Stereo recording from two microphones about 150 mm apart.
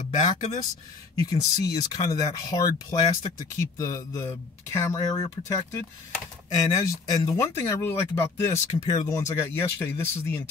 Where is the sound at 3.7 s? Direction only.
20° left (ahead or behind).